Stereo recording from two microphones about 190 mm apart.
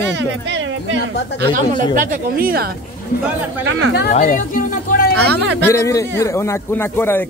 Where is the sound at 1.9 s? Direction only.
45° right (ahead or behind).